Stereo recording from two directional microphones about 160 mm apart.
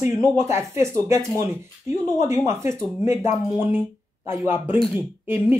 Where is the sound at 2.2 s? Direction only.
20° right (ahead or behind).